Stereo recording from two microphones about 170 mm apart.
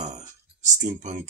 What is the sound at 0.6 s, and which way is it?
Speech, 45° right (ahead or behind).